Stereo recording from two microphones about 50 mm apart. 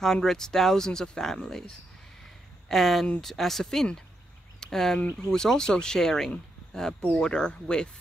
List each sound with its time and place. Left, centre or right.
0.0 s speech: centre